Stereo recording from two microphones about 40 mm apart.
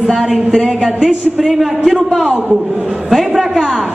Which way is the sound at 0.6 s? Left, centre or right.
Centre.